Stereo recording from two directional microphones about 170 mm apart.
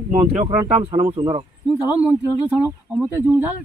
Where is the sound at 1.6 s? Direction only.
5° right (ahead or behind).